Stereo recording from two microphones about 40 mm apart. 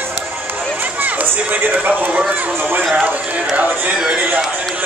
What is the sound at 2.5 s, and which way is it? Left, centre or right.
Speech, right.